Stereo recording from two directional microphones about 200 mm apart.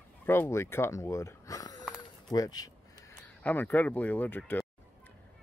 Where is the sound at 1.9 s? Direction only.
20° left (ahead or behind).